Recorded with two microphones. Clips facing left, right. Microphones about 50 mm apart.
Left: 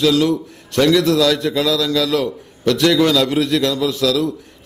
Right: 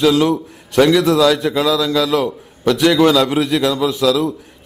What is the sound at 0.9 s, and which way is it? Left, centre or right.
A man's voice, centre.